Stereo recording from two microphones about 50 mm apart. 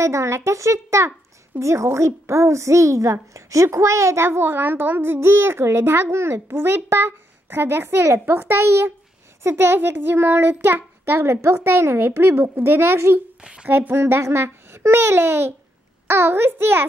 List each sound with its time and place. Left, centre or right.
0.0 s a child's voice: right
4.5 s a woman's voice: right
5.2 s a woman's voice: right
9.8 s a woman's voice: right
13.4 s speech: centre
13.9 s a child's voice: right